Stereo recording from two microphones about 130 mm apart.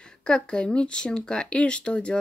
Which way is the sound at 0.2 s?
5° left (ahead or behind).